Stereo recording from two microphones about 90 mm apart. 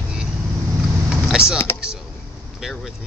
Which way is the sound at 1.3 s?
5° right (ahead or behind).